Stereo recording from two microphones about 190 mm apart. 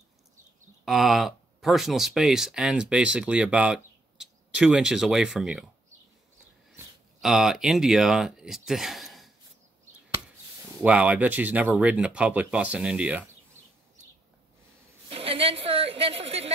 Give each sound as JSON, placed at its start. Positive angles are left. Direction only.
{"t": 0.8, "sound": "speech", "side_deg": 0}
{"t": 7.2, "sound": "speech", "side_deg": 0}
{"t": 10.8, "sound": "speech", "side_deg": -5}
{"t": 15.0, "sound": "a sound", "side_deg": -30}